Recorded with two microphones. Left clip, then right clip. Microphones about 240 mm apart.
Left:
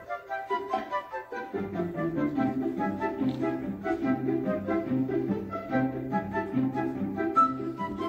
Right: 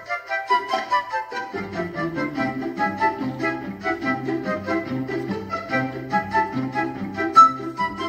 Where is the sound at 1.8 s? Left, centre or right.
Right.